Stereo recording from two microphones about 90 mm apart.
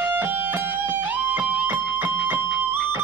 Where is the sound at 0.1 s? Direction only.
20° right (ahead or behind).